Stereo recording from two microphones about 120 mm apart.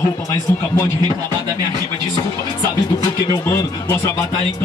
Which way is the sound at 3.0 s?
25° left (ahead or behind).